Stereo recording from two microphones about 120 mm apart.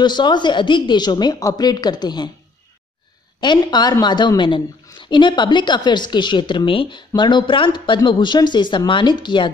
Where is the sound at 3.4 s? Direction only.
40° left (ahead or behind).